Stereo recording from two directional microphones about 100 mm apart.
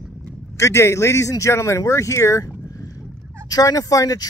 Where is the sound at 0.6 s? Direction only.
30° left (ahead or behind).